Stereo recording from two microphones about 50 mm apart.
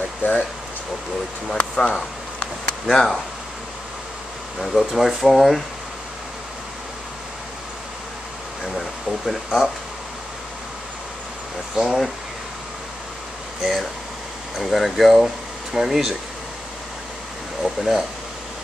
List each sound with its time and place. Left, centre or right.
0.2 s speech: left
1.5 s speech: centre
2.4 s a sound: centre
4.6 s speech: centre
8.6 s speech: centre
11.8 s speech: centre
13.6 s speech: centre
17.6 s speech: centre